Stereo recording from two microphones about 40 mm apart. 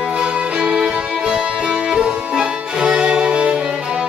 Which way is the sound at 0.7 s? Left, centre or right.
Centre.